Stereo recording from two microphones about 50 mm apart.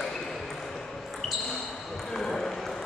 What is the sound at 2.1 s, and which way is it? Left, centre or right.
Basketball bounce, centre.